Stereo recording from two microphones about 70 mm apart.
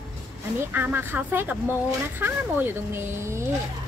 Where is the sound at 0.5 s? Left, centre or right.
Right.